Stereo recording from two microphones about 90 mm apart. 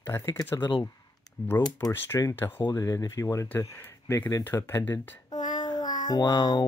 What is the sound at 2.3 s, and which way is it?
Speech, 25° left (ahead or behind).